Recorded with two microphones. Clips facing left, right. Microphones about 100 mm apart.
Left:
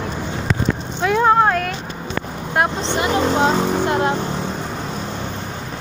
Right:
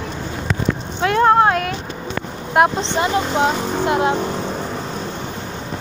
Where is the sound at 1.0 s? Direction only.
Centre (ahead or behind).